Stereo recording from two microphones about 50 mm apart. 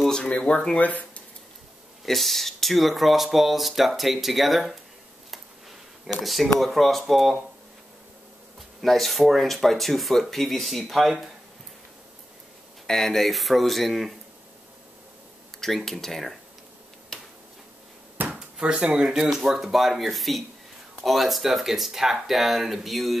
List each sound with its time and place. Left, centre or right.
0.1 s speech: left
0.7 s speech: left
2.0 s speech: centre
6.2 s speech: centre
8.8 s speech: centre
12.8 s speech: centre
15.6 s speech: centre
18.3 s bouncing: centre
18.9 s speech: centre